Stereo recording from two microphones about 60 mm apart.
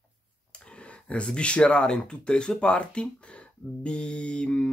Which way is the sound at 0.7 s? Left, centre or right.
Centre.